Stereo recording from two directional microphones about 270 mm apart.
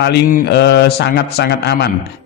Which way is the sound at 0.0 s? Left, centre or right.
Left.